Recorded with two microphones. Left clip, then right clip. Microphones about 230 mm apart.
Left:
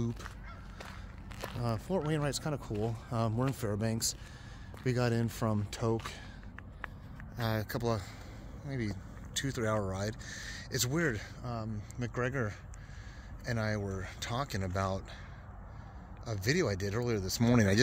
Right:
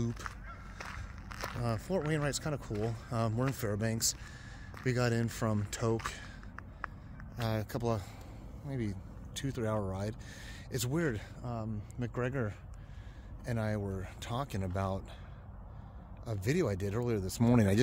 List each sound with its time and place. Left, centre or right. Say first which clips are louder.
1.4 s speech: even; centre
16.3 s speech: left 1 dB; centre